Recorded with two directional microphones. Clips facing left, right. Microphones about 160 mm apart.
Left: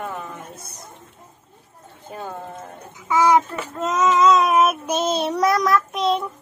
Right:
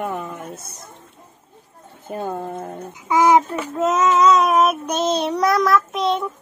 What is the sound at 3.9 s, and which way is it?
Child singing, centre (ahead or behind).